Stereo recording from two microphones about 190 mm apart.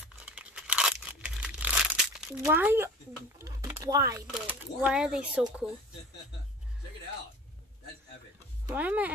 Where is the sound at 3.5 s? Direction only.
15° right (ahead or behind).